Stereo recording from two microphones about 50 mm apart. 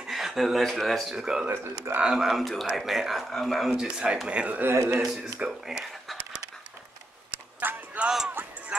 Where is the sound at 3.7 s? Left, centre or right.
Centre.